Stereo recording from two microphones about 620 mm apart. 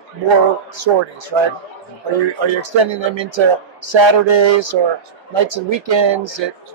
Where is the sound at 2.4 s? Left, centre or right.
Right.